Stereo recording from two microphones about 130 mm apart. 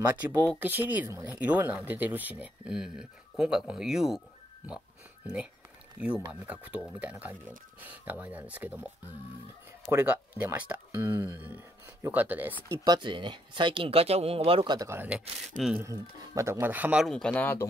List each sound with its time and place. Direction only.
0.6 s speech: 15° right (ahead or behind)
5.2 s speech: 10° right (ahead or behind)
9.9 s speech: 10° right (ahead or behind)
12.9 s speech: 40° right (ahead or behind)
14.9 s speech: 15° right (ahead or behind)
17.0 s speech: 5° left (ahead or behind)